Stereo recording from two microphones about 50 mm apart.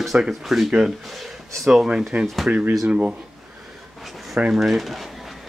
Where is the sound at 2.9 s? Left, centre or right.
Right.